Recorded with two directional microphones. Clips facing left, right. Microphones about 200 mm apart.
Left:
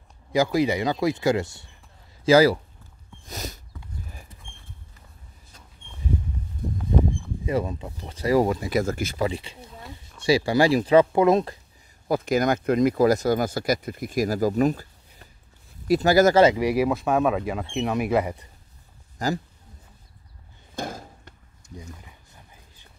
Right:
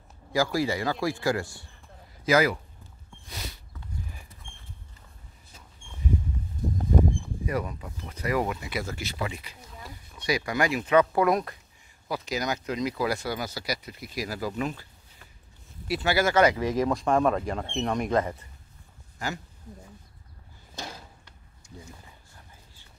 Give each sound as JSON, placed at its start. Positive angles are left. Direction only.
{"t": 0.3, "sound": "a man's voice", "side_deg": 20}
{"t": 3.3, "sound": "a sound", "side_deg": 40}
{"t": 7.4, "sound": "speech", "side_deg": 25}
{"t": 9.3, "sound": "speech", "side_deg": 30}
{"t": 12.1, "sound": "speech", "side_deg": 55}
{"t": 16.5, "sound": "speech", "side_deg": 10}
{"t": 19.1, "sound": "speech", "side_deg": 35}
{"t": 20.7, "sound": "a sound", "side_deg": 50}
{"t": 21.7, "sound": "a sound", "side_deg": 15}